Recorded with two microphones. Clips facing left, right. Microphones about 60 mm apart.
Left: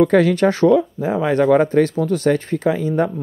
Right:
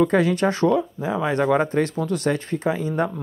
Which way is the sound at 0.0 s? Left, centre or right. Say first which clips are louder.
Left 5 dB; left.